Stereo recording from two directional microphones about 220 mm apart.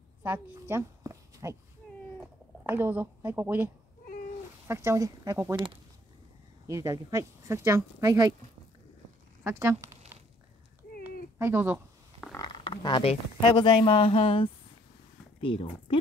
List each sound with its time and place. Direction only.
0.2 s speech: 10° right (ahead or behind)
2.6 s speech: 10° right (ahead or behind)
6.7 s speech: 15° right (ahead or behind)
9.4 s speech: 10° right (ahead or behind)
11.3 s a sound: 10° right (ahead or behind)
12.4 s speech: 20° left (ahead or behind)